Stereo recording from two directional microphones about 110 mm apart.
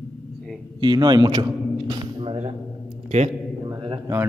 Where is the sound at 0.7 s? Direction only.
40° right (ahead or behind).